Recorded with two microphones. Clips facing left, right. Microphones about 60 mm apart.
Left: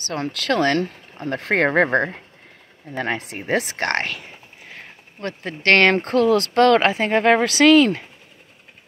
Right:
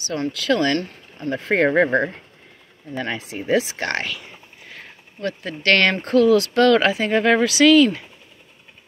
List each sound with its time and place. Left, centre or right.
0.3 s speech: left
4.7 s speech: left